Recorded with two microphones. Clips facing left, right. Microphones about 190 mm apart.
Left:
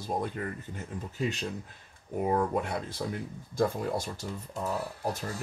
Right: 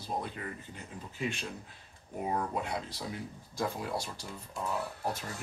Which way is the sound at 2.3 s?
50° left (ahead or behind).